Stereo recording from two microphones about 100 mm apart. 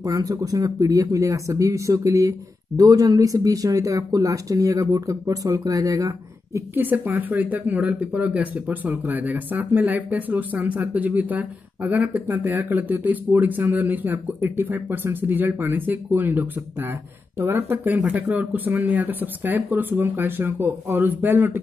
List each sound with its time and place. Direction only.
0.0 s speech: 35° right (ahead or behind)
6.7 s speech: 20° right (ahead or behind)